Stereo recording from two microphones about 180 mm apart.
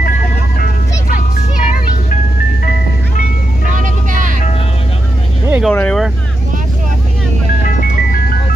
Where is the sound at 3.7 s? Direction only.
45° right (ahead or behind).